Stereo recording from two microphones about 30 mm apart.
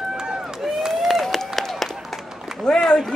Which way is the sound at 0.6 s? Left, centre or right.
Centre.